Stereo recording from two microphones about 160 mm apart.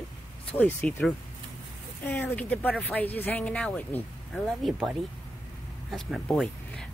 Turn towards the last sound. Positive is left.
turn(degrees=0)  # may be behind; listen again after turning